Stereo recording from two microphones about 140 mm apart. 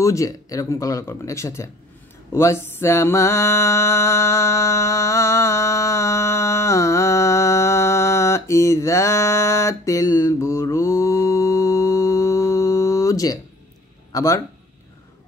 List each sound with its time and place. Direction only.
0.0 s speech: 20° left (ahead or behind)
2.3 s mantra: 20° left (ahead or behind)
14.1 s speech: 20° left (ahead or behind)